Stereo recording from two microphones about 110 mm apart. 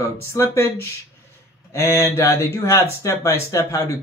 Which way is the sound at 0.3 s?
25° left (ahead or behind).